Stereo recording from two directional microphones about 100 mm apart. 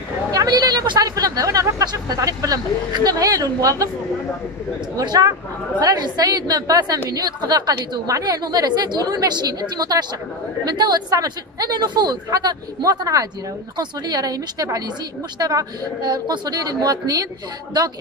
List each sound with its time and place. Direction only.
0.3 s speech: 40° right (ahead or behind)
4.9 s a woman's voice: 40° right (ahead or behind)